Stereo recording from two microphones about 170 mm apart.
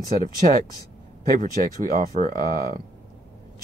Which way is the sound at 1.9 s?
45° right (ahead or behind).